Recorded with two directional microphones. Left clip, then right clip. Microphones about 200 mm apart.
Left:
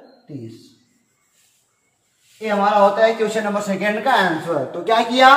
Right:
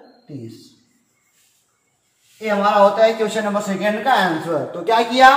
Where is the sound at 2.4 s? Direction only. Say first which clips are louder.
Right 1 dB; centre (ahead or behind); by 5.2 s 25° left (ahead or behind).